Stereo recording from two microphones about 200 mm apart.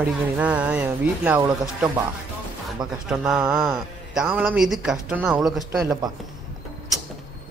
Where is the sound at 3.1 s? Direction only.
5° right (ahead or behind).